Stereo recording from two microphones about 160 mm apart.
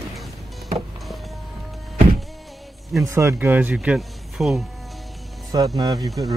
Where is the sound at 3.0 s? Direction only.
15° right (ahead or behind).